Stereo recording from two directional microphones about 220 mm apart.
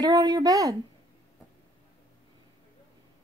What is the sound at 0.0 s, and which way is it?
Speech, 15° right (ahead or behind).